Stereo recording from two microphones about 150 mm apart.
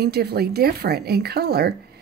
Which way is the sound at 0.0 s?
90° right.